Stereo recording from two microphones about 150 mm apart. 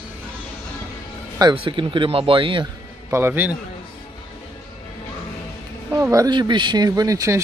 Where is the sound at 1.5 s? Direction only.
35° right (ahead or behind).